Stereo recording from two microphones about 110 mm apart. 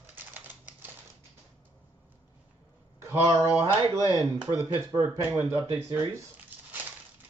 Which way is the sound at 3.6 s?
35° right (ahead or behind).